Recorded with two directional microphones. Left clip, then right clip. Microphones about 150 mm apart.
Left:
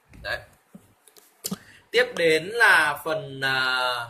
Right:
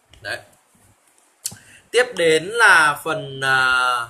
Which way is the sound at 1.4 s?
20° right (ahead or behind).